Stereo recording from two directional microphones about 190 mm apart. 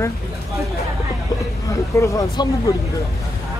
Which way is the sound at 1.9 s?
15° left (ahead or behind).